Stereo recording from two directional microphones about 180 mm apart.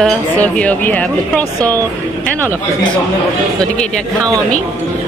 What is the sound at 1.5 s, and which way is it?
Speech, 20° right (ahead or behind).